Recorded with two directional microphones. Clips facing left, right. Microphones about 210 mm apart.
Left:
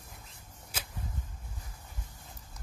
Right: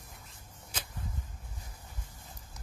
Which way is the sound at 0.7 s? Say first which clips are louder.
Even; 10° left (ahead or behind).